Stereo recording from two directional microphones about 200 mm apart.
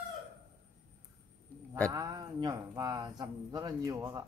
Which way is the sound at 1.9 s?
20° right (ahead or behind).